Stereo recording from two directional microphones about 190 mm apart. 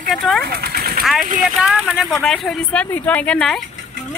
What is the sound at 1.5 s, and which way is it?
Speech, 5° right (ahead or behind).